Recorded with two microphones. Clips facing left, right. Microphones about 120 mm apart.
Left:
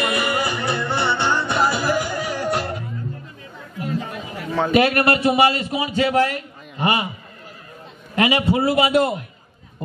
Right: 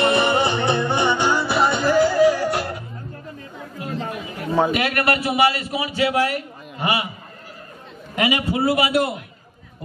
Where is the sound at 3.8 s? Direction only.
30° right (ahead or behind).